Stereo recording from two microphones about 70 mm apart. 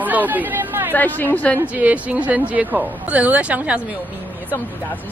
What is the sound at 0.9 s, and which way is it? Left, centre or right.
Speech, left.